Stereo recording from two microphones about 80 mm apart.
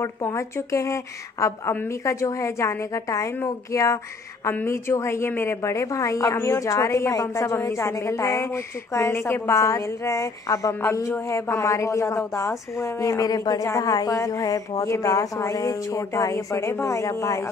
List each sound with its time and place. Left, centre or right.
0.0 s speech: left